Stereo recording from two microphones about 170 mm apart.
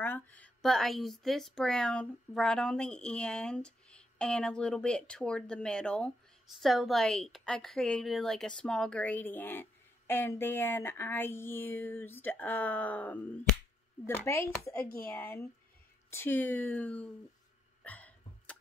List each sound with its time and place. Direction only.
0.0 s speech: 10° left (ahead or behind)
14.8 s speech: 60° left (ahead or behind)
15.0 s speech: 10° left (ahead or behind)
17.8 s cough: 10° left (ahead or behind)